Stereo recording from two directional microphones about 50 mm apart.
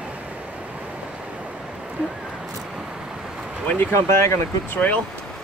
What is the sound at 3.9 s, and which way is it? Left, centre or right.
Speech, left.